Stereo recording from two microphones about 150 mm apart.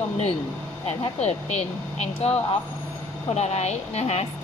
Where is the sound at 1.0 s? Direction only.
45° left (ahead or behind).